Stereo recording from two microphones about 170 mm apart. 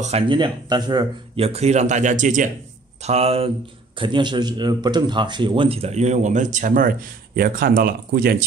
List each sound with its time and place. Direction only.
0.3 s speech: 25° right (ahead or behind); by 2.5 s 50° right (ahead or behind)
3.0 s speech: 35° right (ahead or behind); by 8.5 s 60° right (ahead or behind)